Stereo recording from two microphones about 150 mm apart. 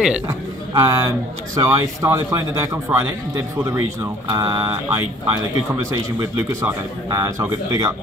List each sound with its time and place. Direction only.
0.3 s a man's voice: 20° right (ahead or behind)